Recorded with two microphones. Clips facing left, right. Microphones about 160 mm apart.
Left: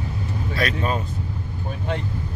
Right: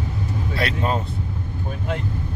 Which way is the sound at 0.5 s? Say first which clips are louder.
Even; 25° right (ahead or behind).